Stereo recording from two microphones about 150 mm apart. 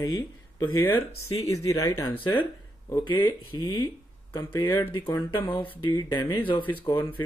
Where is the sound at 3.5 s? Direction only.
30° left (ahead or behind).